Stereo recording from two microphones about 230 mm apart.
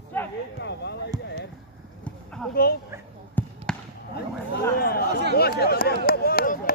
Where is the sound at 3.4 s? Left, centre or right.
Centre.